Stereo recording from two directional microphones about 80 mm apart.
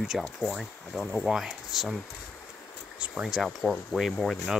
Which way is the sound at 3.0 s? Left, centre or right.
Centre.